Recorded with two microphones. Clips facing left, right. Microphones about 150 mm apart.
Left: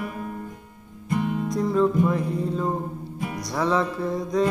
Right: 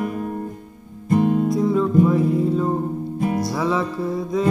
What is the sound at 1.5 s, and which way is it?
Music, 5° right (ahead or behind).